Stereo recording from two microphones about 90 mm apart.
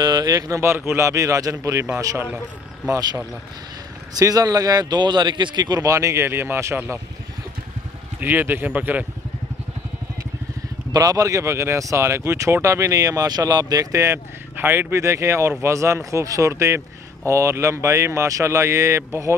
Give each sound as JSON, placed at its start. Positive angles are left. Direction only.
{"t": 0.0, "sound": "a man's voice", "side_deg": -45}
{"t": 0.6, "sound": "a man's voice", "side_deg": -30}
{"t": 2.2, "sound": "speech", "side_deg": -10}
{"t": 4.2, "sound": "a man's voice", "side_deg": -45}
{"t": 5.8, "sound": "a man's voice", "side_deg": -35}
{"t": 8.2, "sound": "speech", "side_deg": -20}
{"t": 10.9, "sound": "a man's voice", "side_deg": -40}